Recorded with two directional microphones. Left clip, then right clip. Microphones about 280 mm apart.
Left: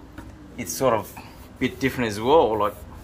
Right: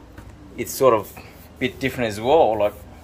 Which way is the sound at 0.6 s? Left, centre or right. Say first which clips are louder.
Right 5 dB; centre.